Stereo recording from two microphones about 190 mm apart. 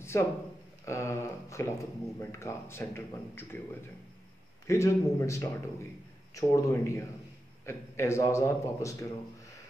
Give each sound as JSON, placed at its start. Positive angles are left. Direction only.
{"t": 0.1, "sound": "speech", "side_deg": 15}
{"t": 4.6, "sound": "speech", "side_deg": 15}